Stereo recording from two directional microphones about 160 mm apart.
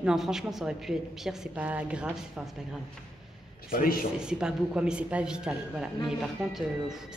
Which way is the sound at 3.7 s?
60° left (ahead or behind).